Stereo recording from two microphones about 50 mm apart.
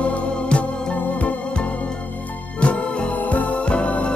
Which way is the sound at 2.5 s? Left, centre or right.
Left.